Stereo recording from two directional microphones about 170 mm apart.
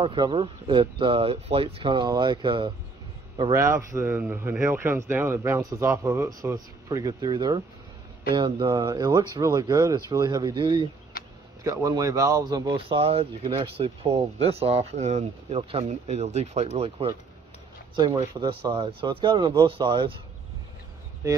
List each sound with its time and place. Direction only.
0.0 s speech: 30° right (ahead or behind)
3.5 s speech: 15° right (ahead or behind); by 17.1 s 35° right (ahead or behind)
17.9 s speech: 25° right (ahead or behind)
21.2 s speech: 15° right (ahead or behind)